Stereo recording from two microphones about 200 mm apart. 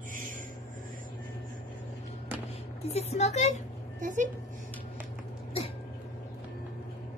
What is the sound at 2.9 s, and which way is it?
Speech, 30° left (ahead or behind).